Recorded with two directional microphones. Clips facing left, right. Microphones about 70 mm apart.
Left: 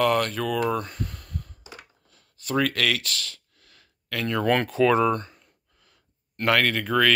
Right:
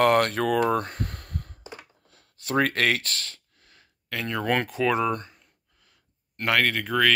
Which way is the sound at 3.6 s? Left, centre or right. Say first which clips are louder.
Left 1 dB; centre.